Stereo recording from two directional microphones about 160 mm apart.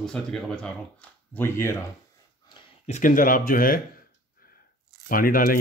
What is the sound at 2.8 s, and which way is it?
Speech, 50° left (ahead or behind).